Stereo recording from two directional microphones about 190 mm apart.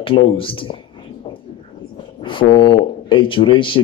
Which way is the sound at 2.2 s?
25° left (ahead or behind).